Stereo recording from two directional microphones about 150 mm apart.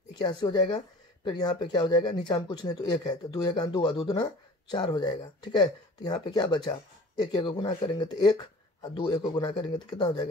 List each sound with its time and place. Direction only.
0.2 s speech: 30° left (ahead or behind)